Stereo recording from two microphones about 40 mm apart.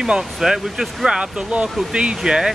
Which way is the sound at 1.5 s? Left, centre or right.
Right.